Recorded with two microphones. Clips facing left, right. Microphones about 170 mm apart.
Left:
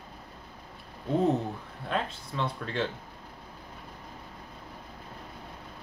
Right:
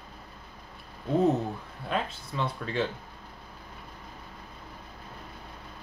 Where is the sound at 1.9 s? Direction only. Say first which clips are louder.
Even; 5° right (ahead or behind).